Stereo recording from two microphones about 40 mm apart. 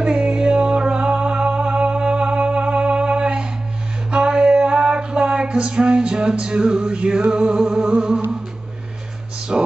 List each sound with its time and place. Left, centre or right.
0.0 s music: right
7.9 s humming: centre
9.5 s music: right